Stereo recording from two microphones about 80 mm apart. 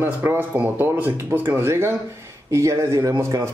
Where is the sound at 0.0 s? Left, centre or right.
Right.